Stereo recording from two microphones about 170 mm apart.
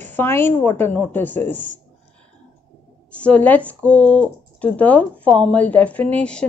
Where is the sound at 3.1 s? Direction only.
5° left (ahead or behind).